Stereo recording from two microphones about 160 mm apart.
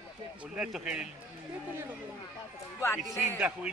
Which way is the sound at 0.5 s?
5° right (ahead or behind).